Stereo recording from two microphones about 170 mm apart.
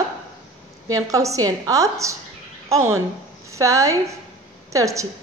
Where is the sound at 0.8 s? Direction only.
20° right (ahead or behind).